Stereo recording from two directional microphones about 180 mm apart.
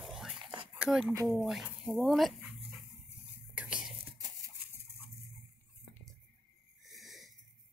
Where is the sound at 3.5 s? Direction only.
5° right (ahead or behind).